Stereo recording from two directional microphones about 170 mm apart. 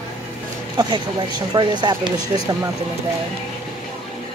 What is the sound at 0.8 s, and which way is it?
Speech, 25° right (ahead or behind).